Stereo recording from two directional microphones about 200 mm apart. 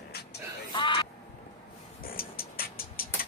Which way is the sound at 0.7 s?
25° left (ahead or behind).